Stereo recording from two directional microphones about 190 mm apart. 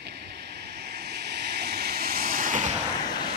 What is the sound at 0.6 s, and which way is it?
Vehicle, 55° right (ahead or behind).